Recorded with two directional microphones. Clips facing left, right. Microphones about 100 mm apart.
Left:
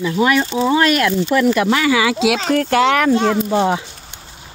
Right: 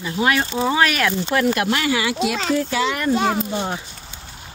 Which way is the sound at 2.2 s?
90° left.